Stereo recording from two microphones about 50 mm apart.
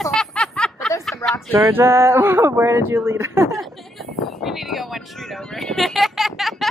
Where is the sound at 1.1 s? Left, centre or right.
Left.